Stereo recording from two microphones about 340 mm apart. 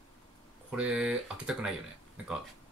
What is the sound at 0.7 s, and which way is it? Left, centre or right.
Speech, centre.